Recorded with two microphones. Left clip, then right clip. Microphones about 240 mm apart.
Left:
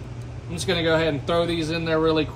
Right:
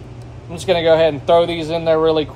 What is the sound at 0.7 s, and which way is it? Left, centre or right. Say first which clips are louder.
Speech: right 9 dB; left.